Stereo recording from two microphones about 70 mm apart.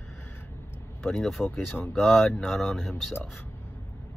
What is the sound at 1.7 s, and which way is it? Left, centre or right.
Speech, left.